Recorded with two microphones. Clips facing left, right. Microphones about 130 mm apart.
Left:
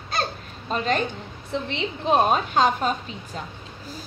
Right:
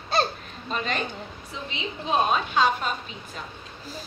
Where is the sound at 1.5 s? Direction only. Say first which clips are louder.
Left 8 dB; 60° left (ahead or behind).